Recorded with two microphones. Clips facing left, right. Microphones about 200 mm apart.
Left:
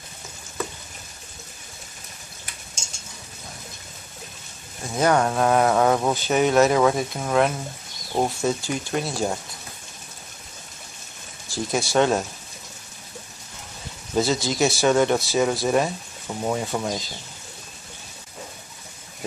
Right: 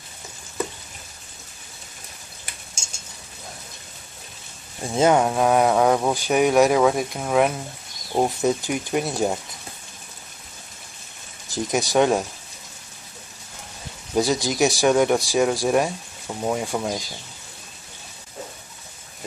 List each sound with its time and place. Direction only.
4.9 s speech: 25° right (ahead or behind)
5.2 s speech: 5° right (ahead or behind)
11.4 s speech: 20° right (ahead or behind)
14.1 s speech: 15° right (ahead or behind)